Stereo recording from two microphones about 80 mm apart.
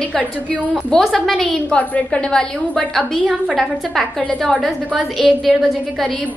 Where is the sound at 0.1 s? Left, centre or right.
Centre.